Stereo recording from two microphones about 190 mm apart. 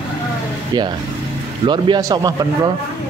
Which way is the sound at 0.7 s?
20° right (ahead or behind).